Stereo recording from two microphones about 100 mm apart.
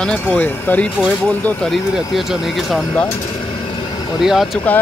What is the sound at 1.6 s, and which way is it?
Speech, centre (ahead or behind).